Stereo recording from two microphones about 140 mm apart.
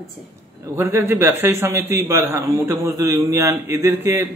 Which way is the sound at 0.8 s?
20° right (ahead or behind).